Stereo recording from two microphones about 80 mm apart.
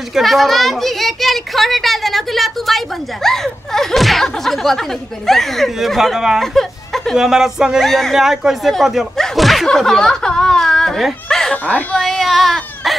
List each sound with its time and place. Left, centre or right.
0.1 s a woman's voice: centre
6.4 s speech: centre
7.2 s speech: centre
7.8 s a woman's voice: centre
11.5 s speech: centre
12.0 s speech: centre